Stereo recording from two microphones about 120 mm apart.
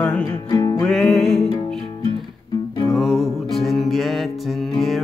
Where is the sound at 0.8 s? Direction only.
5° left (ahead or behind).